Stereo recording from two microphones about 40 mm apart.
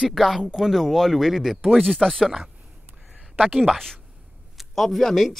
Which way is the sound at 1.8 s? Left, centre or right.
Centre.